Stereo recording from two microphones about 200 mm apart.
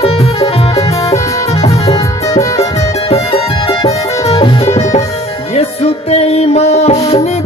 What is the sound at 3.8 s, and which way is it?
Music, 30° left (ahead or behind).